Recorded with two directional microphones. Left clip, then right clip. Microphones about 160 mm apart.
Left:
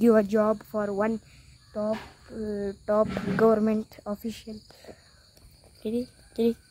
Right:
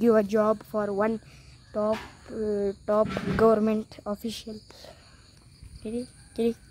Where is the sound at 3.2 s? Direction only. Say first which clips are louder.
Right 1 dB; 10° right (ahead or behind).